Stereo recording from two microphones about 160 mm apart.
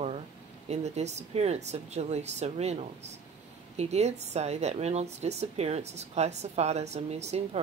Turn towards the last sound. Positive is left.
turn(degrees=-45)  # may be behind; listen again after turning